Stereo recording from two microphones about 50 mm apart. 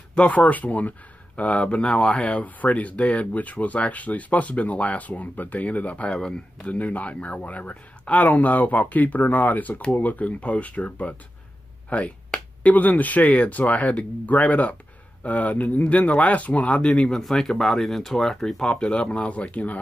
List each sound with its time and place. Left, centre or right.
0.1 s speech: left
17.2 s speech: centre; by 19.8 s left